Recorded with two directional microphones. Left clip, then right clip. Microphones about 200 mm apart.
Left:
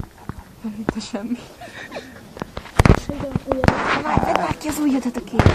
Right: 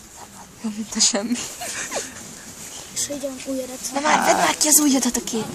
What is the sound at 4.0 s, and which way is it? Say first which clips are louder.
Speech: right 3 dB; 35° right (ahead or behind).